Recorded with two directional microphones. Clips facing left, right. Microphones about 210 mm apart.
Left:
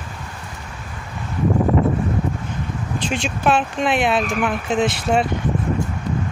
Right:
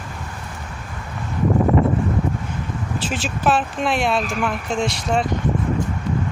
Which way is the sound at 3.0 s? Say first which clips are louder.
Left 3 dB; 5° right (ahead or behind).